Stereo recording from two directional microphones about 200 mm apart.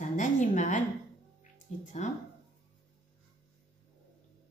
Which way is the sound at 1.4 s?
40° left (ahead or behind).